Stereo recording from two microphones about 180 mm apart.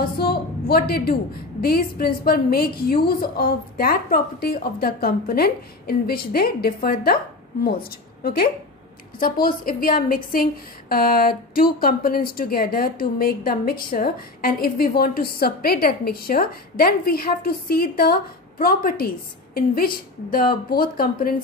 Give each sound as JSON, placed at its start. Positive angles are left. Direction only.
{"t": 0.0, "sound": "a woman's voice", "side_deg": 60}
{"t": 8.2, "sound": "a woman's voice", "side_deg": 55}